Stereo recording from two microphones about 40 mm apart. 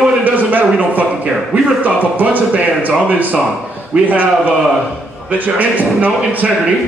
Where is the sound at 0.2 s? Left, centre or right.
Right.